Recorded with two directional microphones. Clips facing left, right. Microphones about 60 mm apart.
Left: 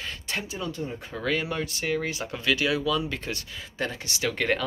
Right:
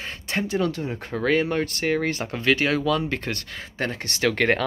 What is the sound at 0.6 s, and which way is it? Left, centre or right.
Speech, right.